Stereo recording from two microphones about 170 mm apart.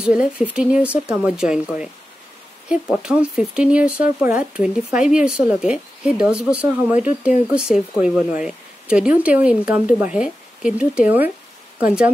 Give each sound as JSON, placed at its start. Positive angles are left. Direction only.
{"t": 0.0, "sound": "speech", "side_deg": -5}